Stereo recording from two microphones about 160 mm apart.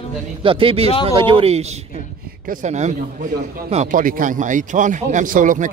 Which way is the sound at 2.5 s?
50° right (ahead or behind).